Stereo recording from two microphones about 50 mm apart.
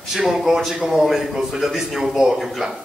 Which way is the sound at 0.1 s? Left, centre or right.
Centre.